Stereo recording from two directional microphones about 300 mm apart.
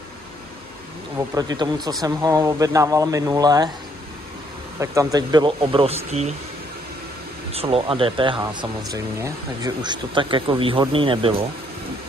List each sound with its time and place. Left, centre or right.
1.3 s speech: centre
4.7 s speech: centre
7.5 s speech: centre